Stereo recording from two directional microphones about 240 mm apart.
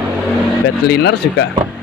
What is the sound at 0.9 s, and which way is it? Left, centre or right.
Speech, left.